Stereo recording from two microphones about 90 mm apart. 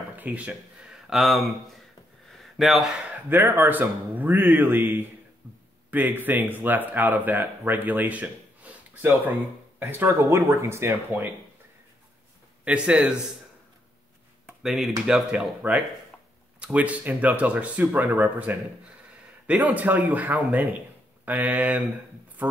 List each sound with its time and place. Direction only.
0.1 s speech: 15° right (ahead or behind)
1.1 s speech: centre (ahead or behind)
2.3 s a sound: centre (ahead or behind)
3.3 s speech: 25° right (ahead or behind)
12.6 s speech: 10° right (ahead or behind)
14.6 s speech: 5° right (ahead or behind)